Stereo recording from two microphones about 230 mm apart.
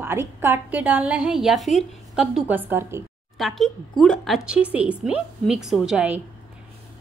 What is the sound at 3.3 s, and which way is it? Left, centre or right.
Speech, centre.